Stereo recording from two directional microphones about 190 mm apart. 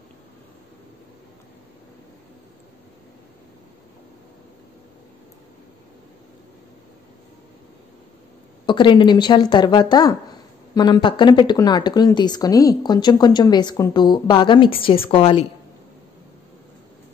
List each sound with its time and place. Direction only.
8.6 s speech: 25° left (ahead or behind)